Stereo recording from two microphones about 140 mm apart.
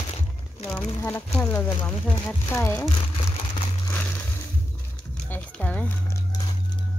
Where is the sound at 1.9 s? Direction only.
10° left (ahead or behind).